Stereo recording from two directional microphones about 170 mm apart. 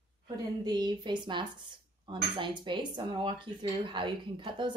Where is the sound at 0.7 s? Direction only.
25° right (ahead or behind).